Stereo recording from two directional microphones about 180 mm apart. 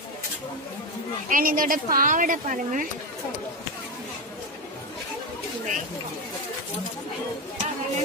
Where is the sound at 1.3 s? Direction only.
50° right (ahead or behind).